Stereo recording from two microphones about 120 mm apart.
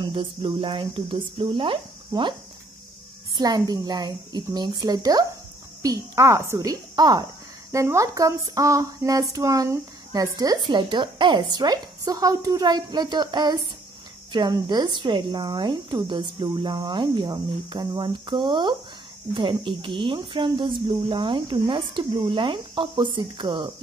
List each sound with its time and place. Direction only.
0.0 s speech: 45° right (ahead or behind)
3.3 s speech: 35° right (ahead or behind)